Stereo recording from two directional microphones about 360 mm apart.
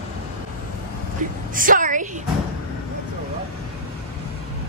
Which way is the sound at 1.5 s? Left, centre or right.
Right.